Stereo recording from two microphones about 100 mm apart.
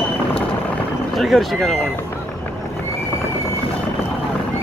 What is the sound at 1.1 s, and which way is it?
Speech, centre (ahead or behind).